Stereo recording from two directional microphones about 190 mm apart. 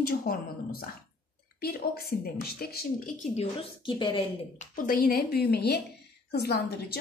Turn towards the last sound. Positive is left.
turn(degrees=55)  # may be behind; listen again after turning